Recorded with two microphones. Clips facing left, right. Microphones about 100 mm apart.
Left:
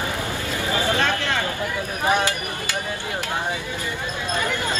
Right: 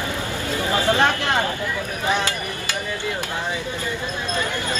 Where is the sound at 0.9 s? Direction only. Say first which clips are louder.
Right 3 dB; 20° right (ahead or behind).